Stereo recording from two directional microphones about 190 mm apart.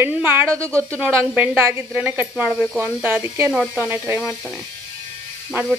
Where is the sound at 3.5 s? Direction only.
Centre (ahead or behind).